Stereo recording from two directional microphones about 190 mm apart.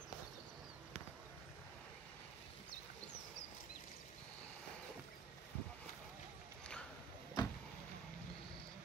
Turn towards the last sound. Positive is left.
turn(degrees=20)  # may be behind; listen again after turning